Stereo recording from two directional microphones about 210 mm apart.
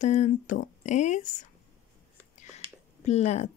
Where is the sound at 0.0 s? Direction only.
35° left (ahead or behind).